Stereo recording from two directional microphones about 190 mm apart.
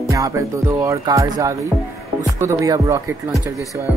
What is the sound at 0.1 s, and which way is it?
Speech, 15° right (ahead or behind).